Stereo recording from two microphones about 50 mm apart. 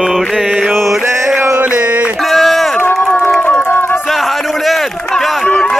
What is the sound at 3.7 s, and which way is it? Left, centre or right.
Music, left.